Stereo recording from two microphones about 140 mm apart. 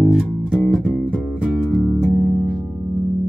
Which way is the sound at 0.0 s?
Centre (ahead or behind).